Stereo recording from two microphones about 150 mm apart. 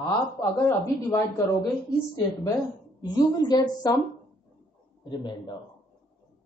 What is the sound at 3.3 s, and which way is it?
Speech, 30° left (ahead or behind).